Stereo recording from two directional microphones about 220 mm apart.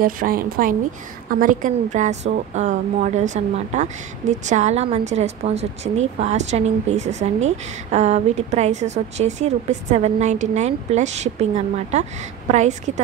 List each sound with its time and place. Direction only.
0.0 s a woman's voice: 40° right (ahead or behind)